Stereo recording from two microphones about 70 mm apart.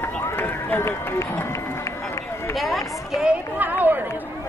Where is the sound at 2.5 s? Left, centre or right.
Centre.